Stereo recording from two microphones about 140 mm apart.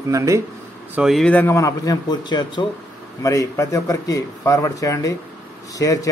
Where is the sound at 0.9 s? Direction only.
Centre (ahead or behind).